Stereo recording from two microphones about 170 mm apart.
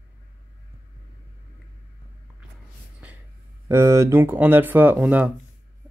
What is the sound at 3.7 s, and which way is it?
Speech, 15° right (ahead or behind).